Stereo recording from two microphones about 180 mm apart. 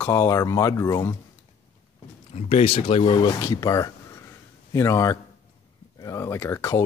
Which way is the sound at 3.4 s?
20° left (ahead or behind).